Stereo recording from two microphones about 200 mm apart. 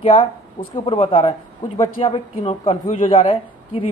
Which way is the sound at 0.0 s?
30° left (ahead or behind).